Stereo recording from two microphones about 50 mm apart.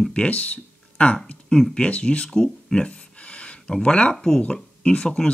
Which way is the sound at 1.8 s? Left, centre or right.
Left.